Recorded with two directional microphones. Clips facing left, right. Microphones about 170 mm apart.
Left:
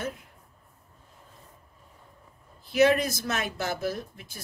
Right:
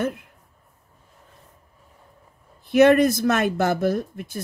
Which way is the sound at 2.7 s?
55° right (ahead or behind).